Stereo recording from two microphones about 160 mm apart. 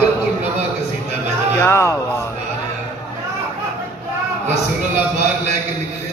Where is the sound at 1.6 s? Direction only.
15° left (ahead or behind).